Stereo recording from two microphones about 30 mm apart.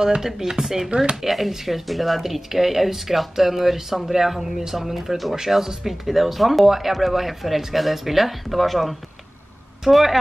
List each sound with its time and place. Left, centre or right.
0.0 s speech: centre
1.2 s speech: centre
5.3 s speech: centre